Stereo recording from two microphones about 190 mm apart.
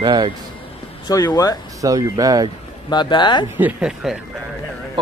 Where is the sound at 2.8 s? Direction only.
25° left (ahead or behind).